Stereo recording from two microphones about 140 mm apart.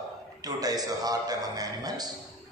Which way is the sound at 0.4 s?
25° right (ahead or behind).